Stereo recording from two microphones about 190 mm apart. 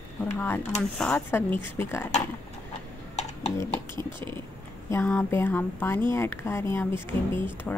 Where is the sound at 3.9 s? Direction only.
25° right (ahead or behind).